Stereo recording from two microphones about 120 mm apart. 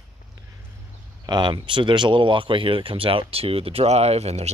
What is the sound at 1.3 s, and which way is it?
Speech, 40° right (ahead or behind).